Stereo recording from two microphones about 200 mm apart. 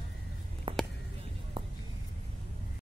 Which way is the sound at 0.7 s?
25° right (ahead or behind).